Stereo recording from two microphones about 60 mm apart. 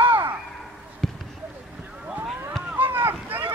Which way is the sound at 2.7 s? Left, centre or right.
Right.